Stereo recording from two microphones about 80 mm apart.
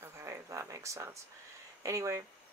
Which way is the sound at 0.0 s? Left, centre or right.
Right.